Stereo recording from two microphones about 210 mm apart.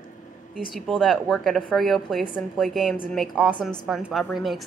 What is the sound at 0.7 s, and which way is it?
A woman's voice, centre (ahead or behind).